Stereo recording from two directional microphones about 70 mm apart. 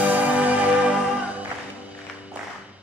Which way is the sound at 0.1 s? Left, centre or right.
Right.